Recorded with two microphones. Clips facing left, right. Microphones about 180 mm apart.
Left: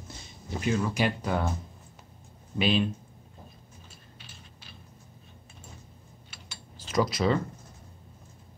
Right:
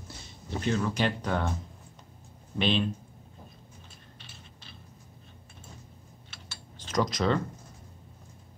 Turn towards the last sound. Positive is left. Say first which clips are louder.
# left 1 dB
turn(degrees=5)  # may be behind; listen again after turning